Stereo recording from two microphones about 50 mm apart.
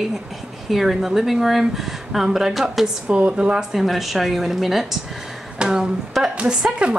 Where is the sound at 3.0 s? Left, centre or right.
Right.